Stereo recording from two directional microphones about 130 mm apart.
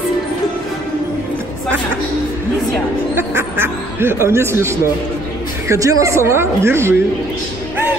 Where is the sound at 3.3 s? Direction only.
20° right (ahead or behind).